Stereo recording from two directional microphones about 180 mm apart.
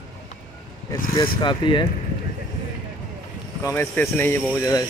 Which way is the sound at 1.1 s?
25° left (ahead or behind).